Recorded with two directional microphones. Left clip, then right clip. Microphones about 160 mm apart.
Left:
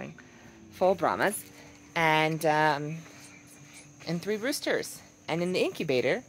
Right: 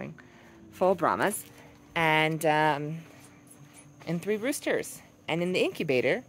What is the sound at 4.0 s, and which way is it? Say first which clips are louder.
Speech: right 1 dB; 15° right (ahead or behind).